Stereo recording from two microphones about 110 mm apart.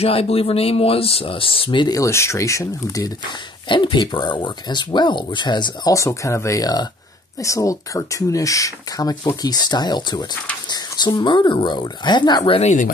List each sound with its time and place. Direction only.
0.0 s speech: 65° left (ahead or behind); by 2.0 s 45° left (ahead or behind)
2.0 s speech: 25° left (ahead or behind)
3.6 s speech: 45° left (ahead or behind)
5.9 s speech: 30° left (ahead or behind)